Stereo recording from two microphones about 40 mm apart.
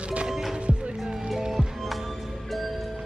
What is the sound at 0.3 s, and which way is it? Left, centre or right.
Music, centre.